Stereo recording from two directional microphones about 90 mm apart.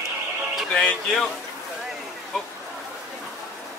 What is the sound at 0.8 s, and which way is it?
Speech, 10° left (ahead or behind).